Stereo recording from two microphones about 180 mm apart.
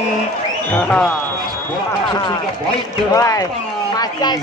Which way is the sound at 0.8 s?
5° left (ahead or behind).